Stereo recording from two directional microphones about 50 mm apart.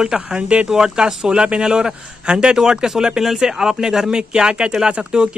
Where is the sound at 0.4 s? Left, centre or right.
Right.